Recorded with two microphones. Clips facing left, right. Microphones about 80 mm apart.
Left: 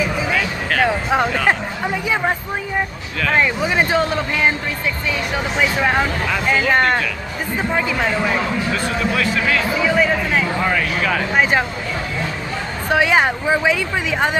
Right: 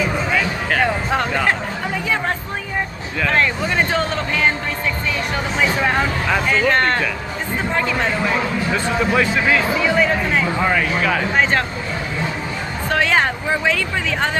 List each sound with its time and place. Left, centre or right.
0.0 s a sound: centre
0.8 s a sound: centre
3.3 s speech: centre
5.6 s speech: centre
8.7 s a man's voice: right
9.8 s speech: centre
12.9 s speech: centre